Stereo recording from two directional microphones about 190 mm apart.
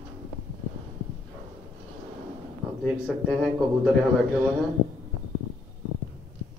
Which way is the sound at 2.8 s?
Centre (ahead or behind).